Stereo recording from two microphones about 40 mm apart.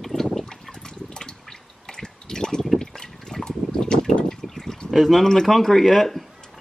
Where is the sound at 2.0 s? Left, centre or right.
Centre.